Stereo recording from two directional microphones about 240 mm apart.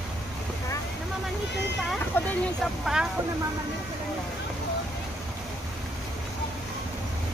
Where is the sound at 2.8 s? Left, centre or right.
Centre.